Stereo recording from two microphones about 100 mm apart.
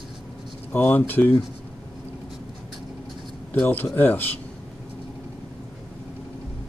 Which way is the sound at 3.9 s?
20° left (ahead or behind).